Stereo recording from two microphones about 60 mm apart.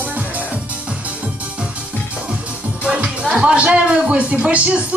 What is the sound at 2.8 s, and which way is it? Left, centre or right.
Speech, centre.